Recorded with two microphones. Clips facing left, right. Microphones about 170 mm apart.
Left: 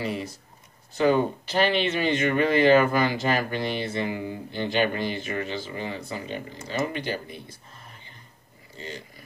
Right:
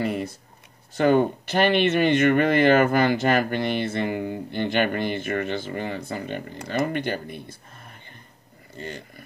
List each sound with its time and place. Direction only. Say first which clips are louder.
0.0 s speech: right 4 dB; 55° right (ahead or behind)
8.7 s speech: right 3 dB; 55° right (ahead or behind)